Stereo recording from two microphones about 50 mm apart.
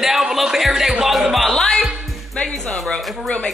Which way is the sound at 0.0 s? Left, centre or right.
Centre.